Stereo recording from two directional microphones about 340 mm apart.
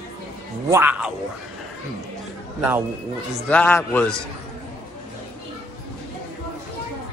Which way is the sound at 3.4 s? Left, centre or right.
Centre.